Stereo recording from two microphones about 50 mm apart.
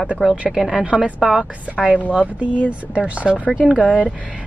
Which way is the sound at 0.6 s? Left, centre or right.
Centre.